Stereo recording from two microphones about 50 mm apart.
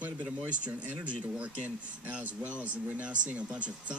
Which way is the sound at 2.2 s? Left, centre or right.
Right.